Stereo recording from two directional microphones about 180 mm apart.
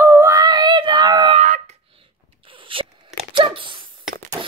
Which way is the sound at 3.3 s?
30° right (ahead or behind).